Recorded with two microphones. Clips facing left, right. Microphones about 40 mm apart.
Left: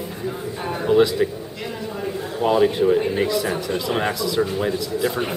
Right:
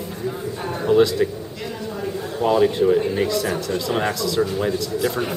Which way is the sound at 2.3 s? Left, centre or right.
Centre.